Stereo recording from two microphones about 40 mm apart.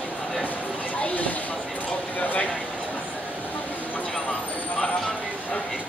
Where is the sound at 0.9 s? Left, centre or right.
Left.